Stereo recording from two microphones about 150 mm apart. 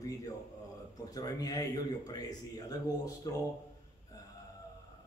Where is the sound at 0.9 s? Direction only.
25° left (ahead or behind).